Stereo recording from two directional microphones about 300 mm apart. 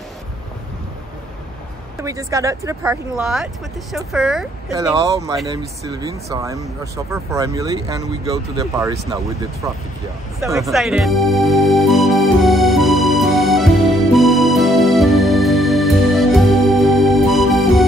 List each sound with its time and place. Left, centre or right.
2.0 s speech: centre
10.4 s music: centre